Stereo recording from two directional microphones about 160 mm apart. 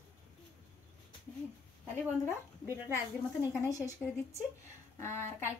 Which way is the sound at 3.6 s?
20° left (ahead or behind).